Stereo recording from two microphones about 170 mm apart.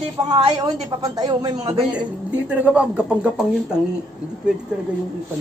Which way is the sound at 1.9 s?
10° right (ahead or behind).